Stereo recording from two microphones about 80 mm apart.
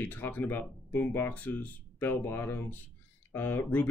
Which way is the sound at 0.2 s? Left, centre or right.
Left.